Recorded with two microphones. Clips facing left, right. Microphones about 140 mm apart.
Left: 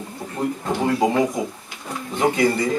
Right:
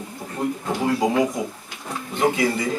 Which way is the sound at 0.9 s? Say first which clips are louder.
Left 1 dB; centre (ahead or behind).